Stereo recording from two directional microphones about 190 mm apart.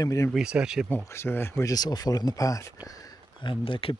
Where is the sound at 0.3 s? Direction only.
5° right (ahead or behind).